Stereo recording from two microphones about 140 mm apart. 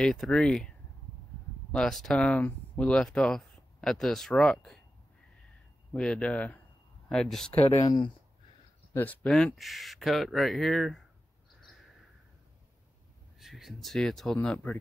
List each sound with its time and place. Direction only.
0.0 s speech: 5° left (ahead or behind)
5.9 s speech: 5° left (ahead or behind)
7.8 s speech: 25° left (ahead or behind)
8.9 s speech: 10° left (ahead or behind)
13.4 s speech: centre (ahead or behind)